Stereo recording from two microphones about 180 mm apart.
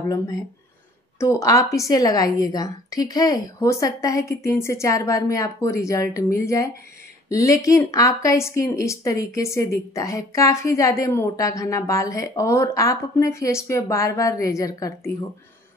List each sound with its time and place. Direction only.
1.2 s speech: 15° left (ahead or behind)